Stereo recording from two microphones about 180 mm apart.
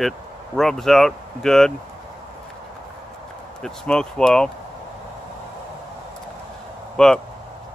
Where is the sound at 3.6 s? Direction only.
5° left (ahead or behind).